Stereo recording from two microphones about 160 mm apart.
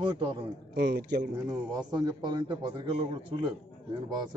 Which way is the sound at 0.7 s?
80° right.